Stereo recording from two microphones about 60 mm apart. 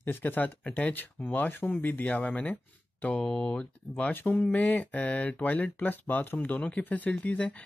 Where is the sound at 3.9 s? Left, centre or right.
Left.